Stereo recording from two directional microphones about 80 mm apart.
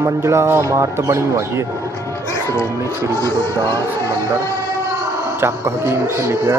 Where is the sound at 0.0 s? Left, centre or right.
Right.